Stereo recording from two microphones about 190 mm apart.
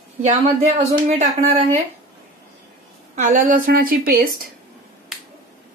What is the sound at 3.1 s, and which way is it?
A woman's voice, 40° right (ahead or behind).